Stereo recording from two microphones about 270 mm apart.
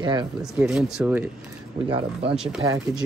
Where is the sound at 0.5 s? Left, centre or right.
Centre.